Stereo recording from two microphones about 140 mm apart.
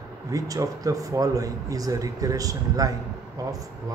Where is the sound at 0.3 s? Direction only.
25° right (ahead or behind).